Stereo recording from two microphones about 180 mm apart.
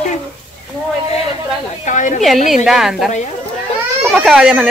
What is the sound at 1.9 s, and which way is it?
Speech, 45° left (ahead or behind).